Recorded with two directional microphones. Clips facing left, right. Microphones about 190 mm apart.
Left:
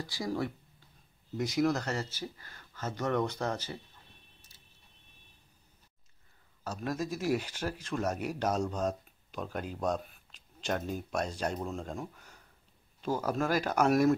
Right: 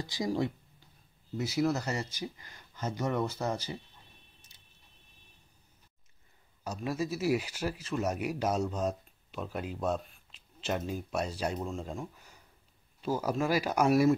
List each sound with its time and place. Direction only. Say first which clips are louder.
0.0 s speech: right 3 dB; 20° right (ahead or behind)
1.3 s speech: left 1 dB; 5° right (ahead or behind)
6.6 s speech: right 1 dB; 10° right (ahead or behind)